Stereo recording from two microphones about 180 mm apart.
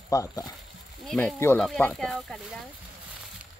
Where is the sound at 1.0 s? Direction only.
Centre (ahead or behind).